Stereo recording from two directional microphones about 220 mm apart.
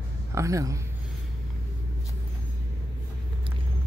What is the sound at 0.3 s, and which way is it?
Speech, 15° right (ahead or behind).